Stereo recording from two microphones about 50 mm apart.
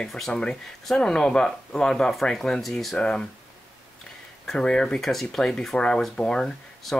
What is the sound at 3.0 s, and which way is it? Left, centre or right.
Speech, centre.